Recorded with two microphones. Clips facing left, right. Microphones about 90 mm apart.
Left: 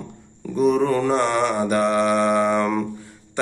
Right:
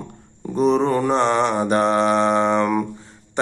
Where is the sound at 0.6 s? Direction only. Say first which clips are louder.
Right 1 dB; 30° right (ahead or behind).